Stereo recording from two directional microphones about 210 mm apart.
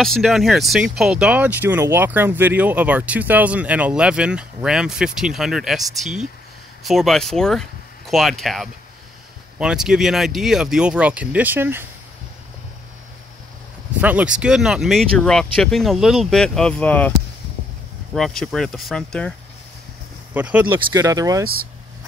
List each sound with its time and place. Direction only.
0.0 s speech: centre (ahead or behind)
14.0 s speech: 5° right (ahead or behind)
18.1 s speech: centre (ahead or behind)
20.3 s speech: 10° right (ahead or behind)